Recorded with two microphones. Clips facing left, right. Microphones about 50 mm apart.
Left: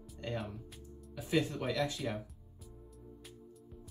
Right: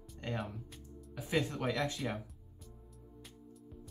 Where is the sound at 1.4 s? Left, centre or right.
Right.